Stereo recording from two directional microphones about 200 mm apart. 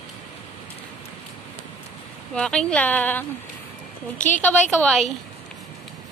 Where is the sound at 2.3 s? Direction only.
5° left (ahead or behind).